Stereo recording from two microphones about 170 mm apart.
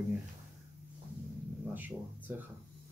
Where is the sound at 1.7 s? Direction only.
10° right (ahead or behind).